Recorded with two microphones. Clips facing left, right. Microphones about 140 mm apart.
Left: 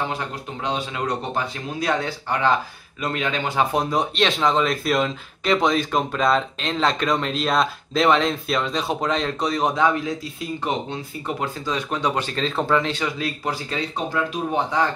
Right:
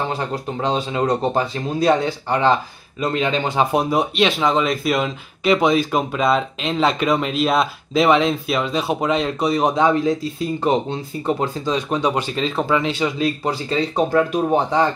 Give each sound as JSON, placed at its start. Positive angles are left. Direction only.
{"t": 0.1, "sound": "speech", "side_deg": -35}
{"t": 3.7, "sound": "speech", "side_deg": -10}
{"t": 10.6, "sound": "speech", "side_deg": -30}
{"t": 11.7, "sound": "speech", "side_deg": -15}
{"t": 13.0, "sound": "speech", "side_deg": -25}
{"t": 13.9, "sound": "speech", "side_deg": -50}